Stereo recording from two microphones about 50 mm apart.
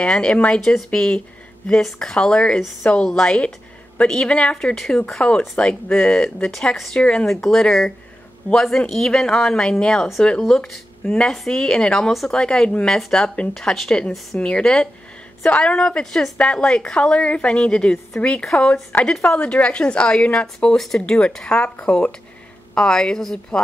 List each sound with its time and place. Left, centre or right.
0.0 s a woman's voice: left
4.7 s a woman's voice: centre
7.2 s a woman's voice: centre
18.1 s a woman's voice: left; by 23.6 s centre